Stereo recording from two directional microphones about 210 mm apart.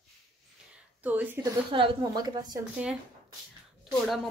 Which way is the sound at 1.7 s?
20° right (ahead or behind).